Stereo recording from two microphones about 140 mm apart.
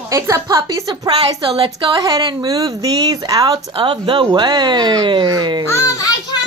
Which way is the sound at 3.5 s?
40° right (ahead or behind).